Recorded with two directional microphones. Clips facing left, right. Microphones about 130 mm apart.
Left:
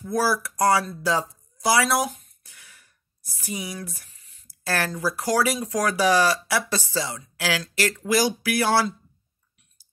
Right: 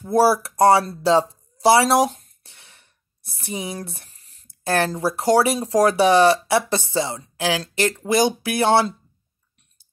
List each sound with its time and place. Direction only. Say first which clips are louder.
0.0 s speech: right 7 dB; 30° right (ahead or behind)
3.4 s a sound: right 3 dB; 25° right (ahead or behind)
4.6 s speech: right 5 dB; 25° right (ahead or behind)